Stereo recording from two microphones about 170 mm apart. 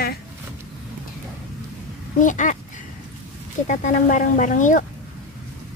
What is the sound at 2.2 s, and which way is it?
Speech, 50° left (ahead or behind).